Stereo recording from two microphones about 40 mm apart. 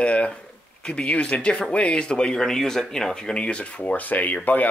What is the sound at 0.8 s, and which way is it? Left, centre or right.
Speech, left.